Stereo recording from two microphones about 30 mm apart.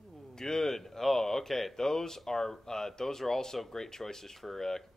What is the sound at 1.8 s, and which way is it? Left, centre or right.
Speech, centre.